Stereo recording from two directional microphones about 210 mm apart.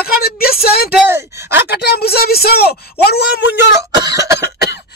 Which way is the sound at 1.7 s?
50° left (ahead or behind).